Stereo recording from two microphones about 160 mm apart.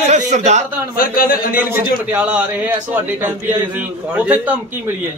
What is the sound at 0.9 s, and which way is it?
Speech, 65° left (ahead or behind).